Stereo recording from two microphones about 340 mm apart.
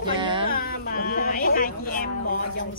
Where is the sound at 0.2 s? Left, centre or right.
Centre.